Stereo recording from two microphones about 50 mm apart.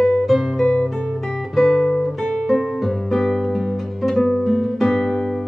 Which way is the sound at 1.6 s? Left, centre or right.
Centre.